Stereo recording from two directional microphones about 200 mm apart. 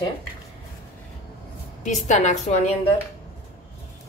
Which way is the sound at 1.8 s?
35° left (ahead or behind).